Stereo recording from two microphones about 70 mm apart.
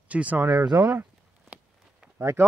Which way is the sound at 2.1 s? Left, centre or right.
Right.